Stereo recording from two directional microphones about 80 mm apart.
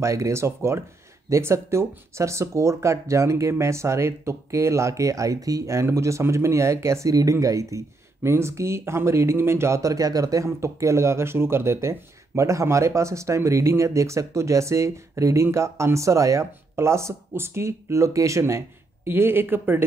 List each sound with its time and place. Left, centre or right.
0.0 s speech: right
19.0 s speech: right